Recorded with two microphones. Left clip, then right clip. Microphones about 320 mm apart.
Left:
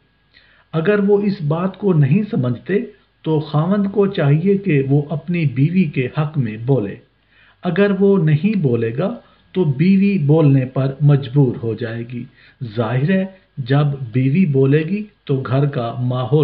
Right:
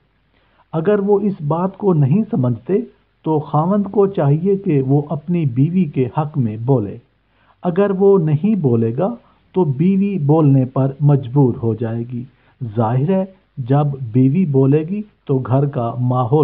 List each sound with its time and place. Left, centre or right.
0.7 s speech: right